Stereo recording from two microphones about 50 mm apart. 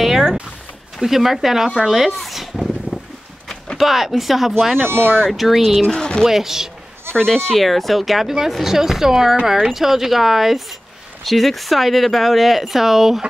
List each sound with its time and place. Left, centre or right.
0.0 s a sound: centre
1.0 s speech: centre
1.8 s a sound: centre
3.7 s speech: centre
5.0 s speech: centre
5.3 s speech: centre
6.2 s speech: centre
7.3 s speech: centre